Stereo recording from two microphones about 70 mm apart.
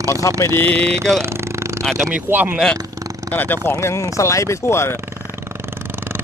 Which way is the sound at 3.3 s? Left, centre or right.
Left.